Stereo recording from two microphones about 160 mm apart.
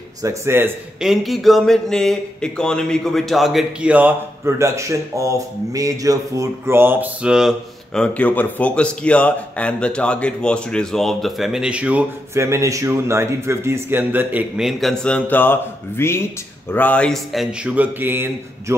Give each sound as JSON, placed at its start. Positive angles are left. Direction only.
{"t": 0.2, "sound": "a man's voice", "side_deg": -15}
{"t": 1.0, "sound": "speech", "side_deg": 0}